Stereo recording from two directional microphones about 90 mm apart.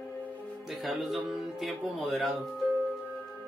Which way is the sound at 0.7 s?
Centre (ahead or behind).